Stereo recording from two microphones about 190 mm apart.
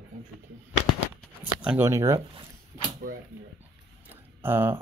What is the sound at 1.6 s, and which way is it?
Speech, 10° right (ahead or behind).